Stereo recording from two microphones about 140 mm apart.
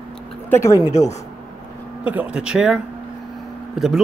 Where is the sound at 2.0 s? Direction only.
10° right (ahead or behind).